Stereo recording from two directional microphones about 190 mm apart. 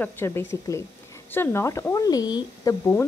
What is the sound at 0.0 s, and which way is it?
Speech, 10° left (ahead or behind).